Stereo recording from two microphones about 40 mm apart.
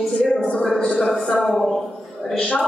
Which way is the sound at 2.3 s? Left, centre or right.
Left.